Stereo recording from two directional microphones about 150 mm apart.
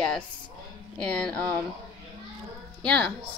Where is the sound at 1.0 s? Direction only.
5° left (ahead or behind).